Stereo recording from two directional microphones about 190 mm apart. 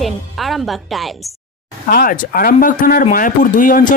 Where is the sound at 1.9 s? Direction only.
50° left (ahead or behind).